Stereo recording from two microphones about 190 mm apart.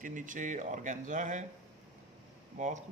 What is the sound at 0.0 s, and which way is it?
Speech, 45° right (ahead or behind).